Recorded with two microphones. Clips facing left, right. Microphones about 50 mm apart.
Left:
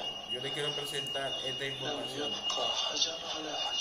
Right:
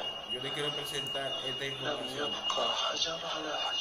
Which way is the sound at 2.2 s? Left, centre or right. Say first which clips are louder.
Right 2 dB; centre.